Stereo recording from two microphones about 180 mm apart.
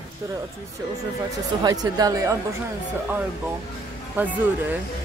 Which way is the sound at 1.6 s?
20° right (ahead or behind).